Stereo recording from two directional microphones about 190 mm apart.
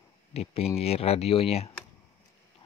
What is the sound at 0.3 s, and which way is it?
Speech, 30° left (ahead or behind).